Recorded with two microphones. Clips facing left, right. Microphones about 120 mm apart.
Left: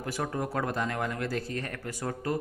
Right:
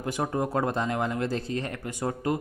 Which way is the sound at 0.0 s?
25° right (ahead or behind).